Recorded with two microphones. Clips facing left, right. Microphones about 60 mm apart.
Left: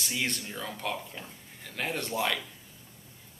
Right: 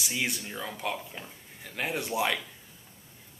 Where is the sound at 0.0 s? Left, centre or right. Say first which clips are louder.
Right 1 dB; centre.